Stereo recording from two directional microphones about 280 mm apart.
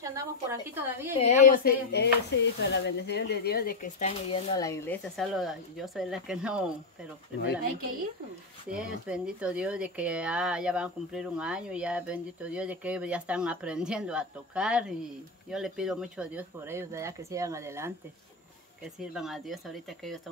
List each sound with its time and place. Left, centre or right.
0.0 s speech: centre
1.2 s speech: left
4.3 s speech: centre
8.7 s speech: centre
18.9 s speech: centre